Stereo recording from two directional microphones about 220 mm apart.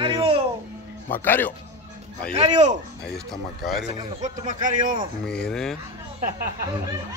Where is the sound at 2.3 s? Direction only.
30° right (ahead or behind).